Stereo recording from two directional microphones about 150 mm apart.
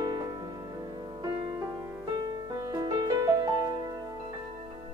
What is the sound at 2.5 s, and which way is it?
Music, 25° right (ahead or behind).